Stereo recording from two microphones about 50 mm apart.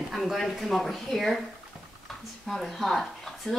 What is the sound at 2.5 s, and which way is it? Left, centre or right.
Speech, centre.